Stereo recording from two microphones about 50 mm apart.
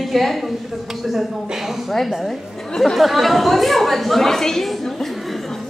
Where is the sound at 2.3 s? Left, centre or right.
Centre.